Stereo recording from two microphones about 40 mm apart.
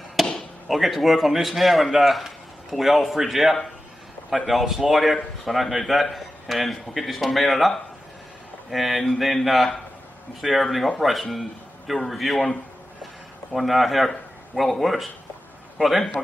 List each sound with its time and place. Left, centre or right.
0.2 s chop: centre
0.7 s a man's voice: centre
13.5 s a man's voice: centre